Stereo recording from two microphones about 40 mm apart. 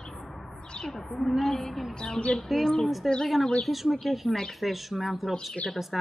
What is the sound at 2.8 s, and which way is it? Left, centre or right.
Speech, centre.